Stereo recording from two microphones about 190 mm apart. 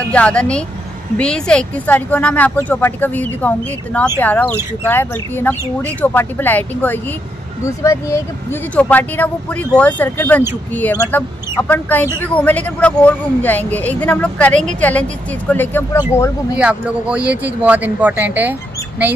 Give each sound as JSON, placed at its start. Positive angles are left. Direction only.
{"t": 0.1, "sound": "speech", "side_deg": 5}
{"t": 16.5, "sound": "speech", "side_deg": -5}